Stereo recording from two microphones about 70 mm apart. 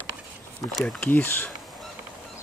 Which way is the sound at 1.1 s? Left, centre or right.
Left.